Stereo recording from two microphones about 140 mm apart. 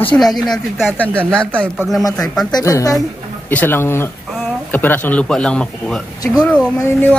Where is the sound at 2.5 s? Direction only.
25° left (ahead or behind).